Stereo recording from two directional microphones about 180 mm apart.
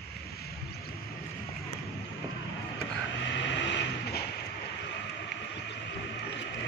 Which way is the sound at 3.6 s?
80° left.